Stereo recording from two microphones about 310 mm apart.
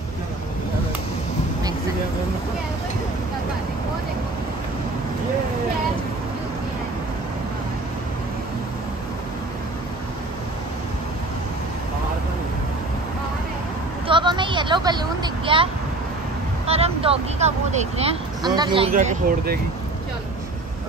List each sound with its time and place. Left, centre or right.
14.0 s vehicle: centre
16.6 s speech: centre
18.9 s speech: right